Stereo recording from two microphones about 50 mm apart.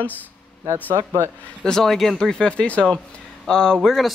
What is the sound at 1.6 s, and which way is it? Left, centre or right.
Speech, centre.